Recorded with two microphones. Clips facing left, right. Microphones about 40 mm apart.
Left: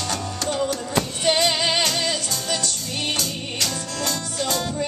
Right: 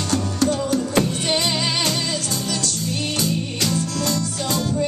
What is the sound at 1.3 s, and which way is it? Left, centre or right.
Music, left.